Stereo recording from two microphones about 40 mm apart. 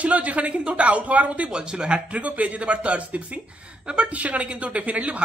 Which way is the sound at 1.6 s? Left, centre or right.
Right.